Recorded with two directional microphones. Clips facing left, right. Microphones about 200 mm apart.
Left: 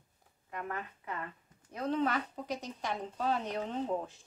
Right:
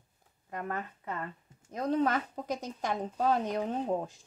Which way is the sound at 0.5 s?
40° right (ahead or behind).